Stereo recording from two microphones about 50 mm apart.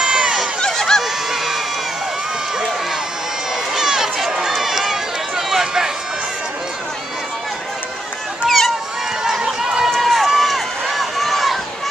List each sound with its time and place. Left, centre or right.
0.0 s a sound: centre
0.6 s honk: centre
1.0 s honk: centre
3.7 s run: centre
8.5 s a sound: centre
9.6 s run: centre
9.8 s run: centre